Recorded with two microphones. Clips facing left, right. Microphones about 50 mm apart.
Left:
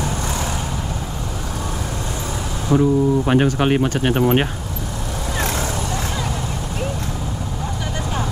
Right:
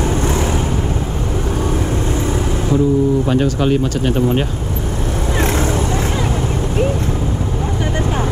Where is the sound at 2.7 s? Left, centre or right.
Left.